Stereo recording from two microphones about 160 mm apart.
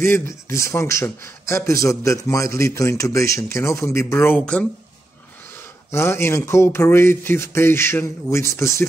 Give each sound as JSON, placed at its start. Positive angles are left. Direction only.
{"t": 0.0, "sound": "a man's voice", "side_deg": 15}
{"t": 5.9, "sound": "a man's voice", "side_deg": 15}